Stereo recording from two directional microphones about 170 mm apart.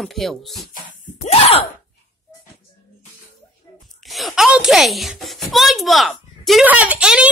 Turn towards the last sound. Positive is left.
turn(degrees=-5)  # may be behind; listen again after turning